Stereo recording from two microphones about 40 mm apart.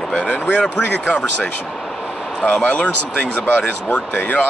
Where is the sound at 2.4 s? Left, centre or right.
Left.